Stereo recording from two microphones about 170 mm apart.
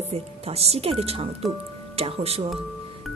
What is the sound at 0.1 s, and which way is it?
Speech, 35° right (ahead or behind).